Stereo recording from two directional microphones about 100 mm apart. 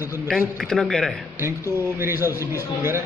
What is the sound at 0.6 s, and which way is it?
Speech, 5° left (ahead or behind).